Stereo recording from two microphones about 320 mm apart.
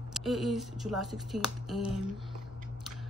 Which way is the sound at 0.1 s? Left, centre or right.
Centre.